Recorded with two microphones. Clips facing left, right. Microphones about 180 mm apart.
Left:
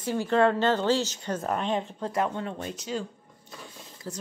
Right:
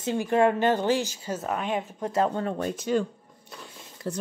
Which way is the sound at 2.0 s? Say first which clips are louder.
Right 6 dB; 25° right (ahead or behind).